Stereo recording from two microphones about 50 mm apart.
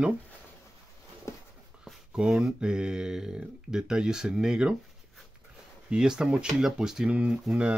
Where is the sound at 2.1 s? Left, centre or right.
Centre.